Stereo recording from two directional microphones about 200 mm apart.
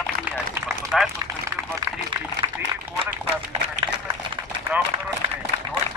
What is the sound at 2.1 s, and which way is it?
Speech, 20° right (ahead or behind).